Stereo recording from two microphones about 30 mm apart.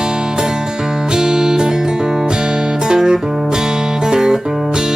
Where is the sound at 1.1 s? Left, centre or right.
Right.